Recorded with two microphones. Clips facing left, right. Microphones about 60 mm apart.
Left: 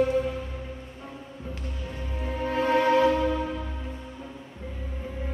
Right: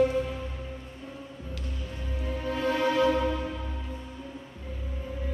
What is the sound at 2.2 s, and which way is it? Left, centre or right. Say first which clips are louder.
Music: left 3 dB; left.